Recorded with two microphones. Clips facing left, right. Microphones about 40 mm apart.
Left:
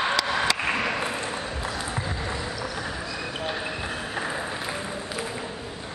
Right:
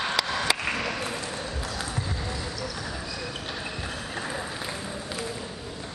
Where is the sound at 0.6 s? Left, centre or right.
Centre.